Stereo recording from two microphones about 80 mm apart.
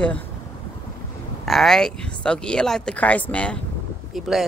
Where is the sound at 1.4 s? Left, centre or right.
Centre.